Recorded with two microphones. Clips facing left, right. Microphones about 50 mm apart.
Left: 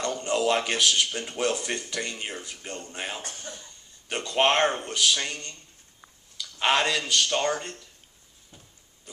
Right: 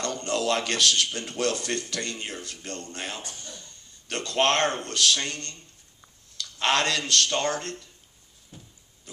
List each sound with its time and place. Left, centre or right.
0.0 s speech: centre
3.2 s a man's voice: left
3.5 s speech: centre
8.5 s a sound: centre